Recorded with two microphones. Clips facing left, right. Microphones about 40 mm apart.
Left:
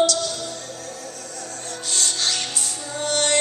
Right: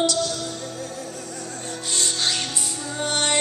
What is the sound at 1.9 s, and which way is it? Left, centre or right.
Music, centre.